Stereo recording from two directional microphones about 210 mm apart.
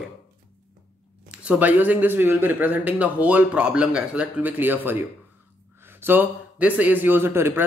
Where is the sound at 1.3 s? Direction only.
5° right (ahead or behind).